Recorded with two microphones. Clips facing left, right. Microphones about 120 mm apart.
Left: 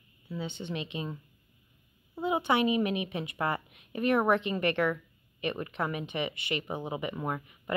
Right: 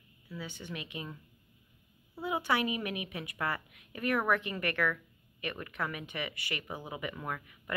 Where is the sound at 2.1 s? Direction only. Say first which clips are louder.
Left 4 dB; 20° left (ahead or behind).